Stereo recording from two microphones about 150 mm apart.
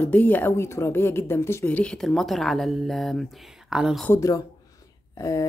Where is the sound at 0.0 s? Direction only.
10° left (ahead or behind).